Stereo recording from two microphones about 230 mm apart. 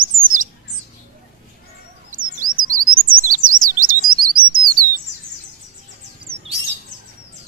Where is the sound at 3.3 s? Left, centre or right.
Right.